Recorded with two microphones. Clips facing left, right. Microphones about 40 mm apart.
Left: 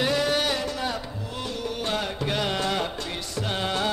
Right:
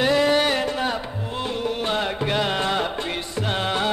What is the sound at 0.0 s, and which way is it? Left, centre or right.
Music, right.